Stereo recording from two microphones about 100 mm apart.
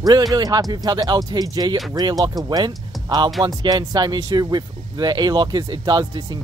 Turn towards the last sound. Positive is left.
turn(degrees=-45)  # may be behind; listen again after turning